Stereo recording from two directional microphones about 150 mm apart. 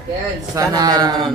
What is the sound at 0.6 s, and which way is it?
Speech, 25° right (ahead or behind).